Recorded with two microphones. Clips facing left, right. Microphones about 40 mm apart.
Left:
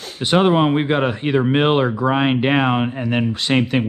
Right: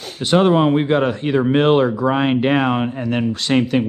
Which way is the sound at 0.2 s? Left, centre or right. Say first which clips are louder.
Right 1 dB; centre.